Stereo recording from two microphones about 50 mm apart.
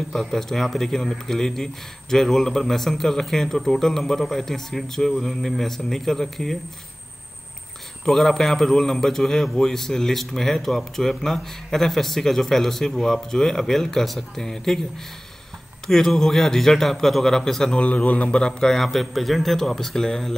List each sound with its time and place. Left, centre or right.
0.1 s a man's voice: centre
8.0 s a man's voice: centre
15.9 s a man's voice: centre
17.7 s speech: left
18.8 s speech: centre